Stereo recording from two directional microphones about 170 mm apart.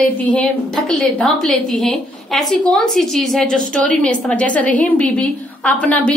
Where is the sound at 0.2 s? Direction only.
5° left (ahead or behind).